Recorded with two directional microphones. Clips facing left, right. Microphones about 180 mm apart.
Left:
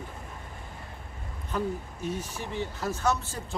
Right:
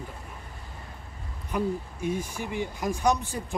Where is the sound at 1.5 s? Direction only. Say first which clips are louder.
Right 2 dB; 10° right (ahead or behind).